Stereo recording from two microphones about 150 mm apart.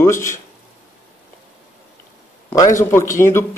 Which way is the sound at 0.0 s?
20° left (ahead or behind).